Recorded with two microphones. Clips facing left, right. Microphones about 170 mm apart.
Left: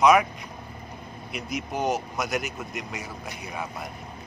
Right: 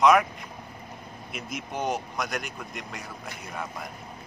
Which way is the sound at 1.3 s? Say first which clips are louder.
Left 4 dB; centre (ahead or behind).